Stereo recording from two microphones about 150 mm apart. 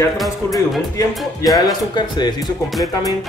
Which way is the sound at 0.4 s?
20° left (ahead or behind).